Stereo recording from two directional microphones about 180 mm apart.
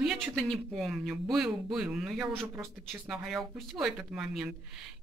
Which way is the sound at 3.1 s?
Centre (ahead or behind).